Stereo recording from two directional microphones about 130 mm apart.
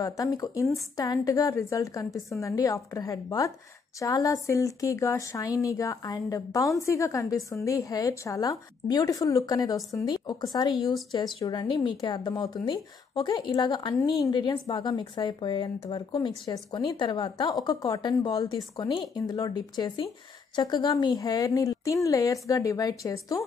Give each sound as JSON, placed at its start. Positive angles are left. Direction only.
{"t": 0.0, "sound": "a woman's voice", "side_deg": 30}